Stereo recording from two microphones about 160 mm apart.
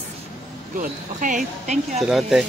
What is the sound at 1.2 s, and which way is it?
Speech, 55° right (ahead or behind).